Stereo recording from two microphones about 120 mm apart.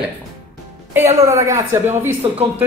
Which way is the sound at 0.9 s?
20° right (ahead or behind).